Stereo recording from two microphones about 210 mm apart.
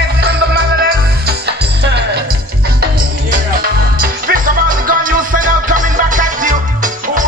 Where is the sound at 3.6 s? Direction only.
45° right (ahead or behind).